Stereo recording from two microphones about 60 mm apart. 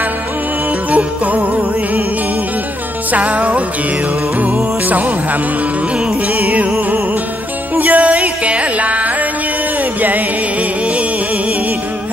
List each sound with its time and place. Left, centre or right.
0.8 s music: right
3.1 s music: right
4.8 s music: right
7.7 s music: right